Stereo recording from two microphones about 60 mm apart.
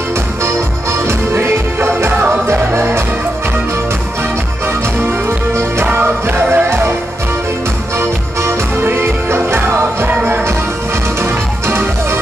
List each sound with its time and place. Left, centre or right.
1.0 s music: right
5.0 s music: right
5.9 s music: right
8.0 s music: right